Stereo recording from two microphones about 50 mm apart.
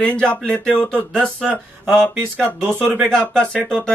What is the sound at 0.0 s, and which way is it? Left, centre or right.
Speech, left.